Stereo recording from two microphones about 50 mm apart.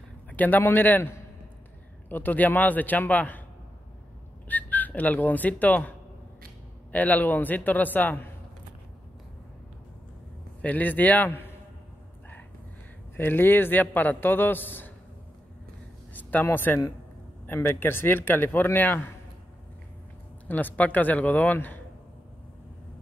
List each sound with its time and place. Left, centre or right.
0.3 s a man's voice: left
4.5 s a man's voice: left
10.6 s a man's voice: left
13.1 s a man's voice: left
16.1 s a sound: left
16.5 s a man's voice: left
17.5 s a man's voice: left
20.4 s a man's voice: left